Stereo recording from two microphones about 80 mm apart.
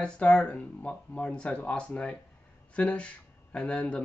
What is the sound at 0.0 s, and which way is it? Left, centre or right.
Speech, centre.